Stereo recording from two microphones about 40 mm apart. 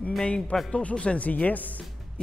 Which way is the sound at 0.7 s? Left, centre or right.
Left.